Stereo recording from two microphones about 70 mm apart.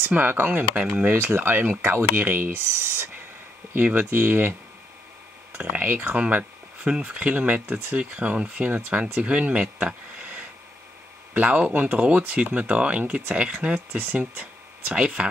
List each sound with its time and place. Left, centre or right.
0.1 s speech: right
1.1 s speech: right
5.6 s speech: right